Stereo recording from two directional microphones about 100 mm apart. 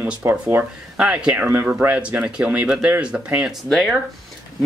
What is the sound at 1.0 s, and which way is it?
Speech, 10° right (ahead or behind).